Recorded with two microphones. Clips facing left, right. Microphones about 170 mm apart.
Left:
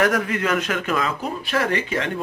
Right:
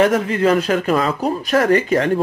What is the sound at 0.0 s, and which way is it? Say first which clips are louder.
A man's voice: right 6 dB; 25° right (ahead or behind).